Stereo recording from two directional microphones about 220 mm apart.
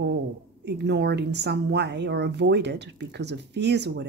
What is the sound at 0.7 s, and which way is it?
Speech, 50° right (ahead or behind).